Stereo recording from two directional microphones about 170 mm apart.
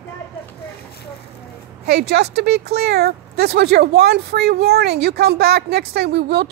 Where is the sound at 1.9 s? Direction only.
75° right (ahead or behind).